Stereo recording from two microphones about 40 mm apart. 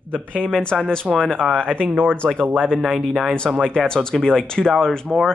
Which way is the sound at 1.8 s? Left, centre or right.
Right.